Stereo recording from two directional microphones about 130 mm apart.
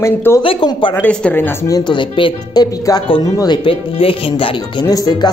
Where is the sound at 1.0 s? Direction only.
10° left (ahead or behind).